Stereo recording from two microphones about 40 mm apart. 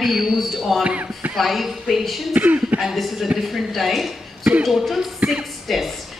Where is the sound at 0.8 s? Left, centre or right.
Right.